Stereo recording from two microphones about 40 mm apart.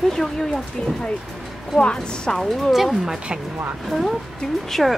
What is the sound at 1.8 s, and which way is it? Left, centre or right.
Speech, left.